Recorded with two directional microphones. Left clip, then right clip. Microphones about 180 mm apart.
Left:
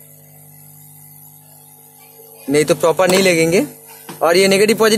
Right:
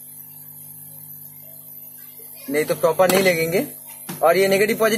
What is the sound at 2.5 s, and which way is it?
A man's voice, 60° left (ahead or behind).